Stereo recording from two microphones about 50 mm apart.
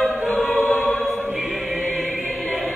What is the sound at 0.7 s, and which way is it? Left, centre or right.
Choir, centre.